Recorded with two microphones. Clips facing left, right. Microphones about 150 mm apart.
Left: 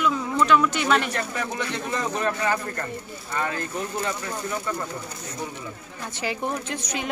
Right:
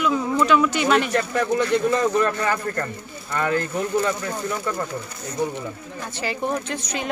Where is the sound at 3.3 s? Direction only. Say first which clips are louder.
Right 6 dB; 60° right (ahead or behind).